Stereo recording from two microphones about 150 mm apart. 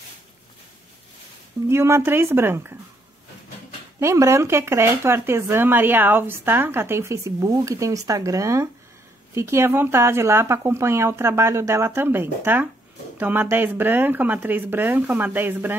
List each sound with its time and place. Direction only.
1.7 s speech: 15° right (ahead or behind)
4.0 s speech: 20° right (ahead or behind)